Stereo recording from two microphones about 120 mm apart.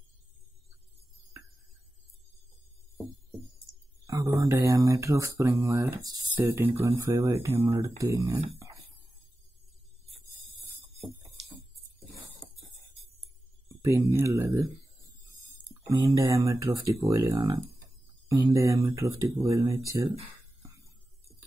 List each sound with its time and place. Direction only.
4.0 s speech: 30° right (ahead or behind)
6.3 s speech: 20° right (ahead or behind)
13.7 s speech: 25° right (ahead or behind)
15.7 s speech: 30° right (ahead or behind)